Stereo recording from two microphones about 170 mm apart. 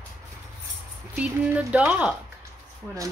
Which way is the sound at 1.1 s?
10° right (ahead or behind).